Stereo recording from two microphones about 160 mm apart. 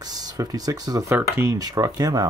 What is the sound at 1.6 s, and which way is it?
Speech, 25° right (ahead or behind).